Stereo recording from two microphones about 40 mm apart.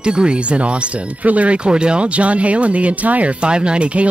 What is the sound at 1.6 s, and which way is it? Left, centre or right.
Speech, right.